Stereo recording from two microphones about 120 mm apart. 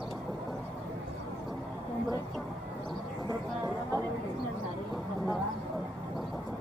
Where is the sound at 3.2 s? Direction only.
30° right (ahead or behind).